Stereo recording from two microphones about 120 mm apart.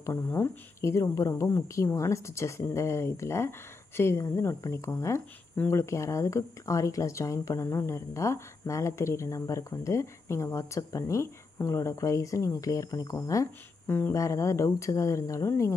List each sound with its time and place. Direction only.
0.0 s speech: 25° left (ahead or behind)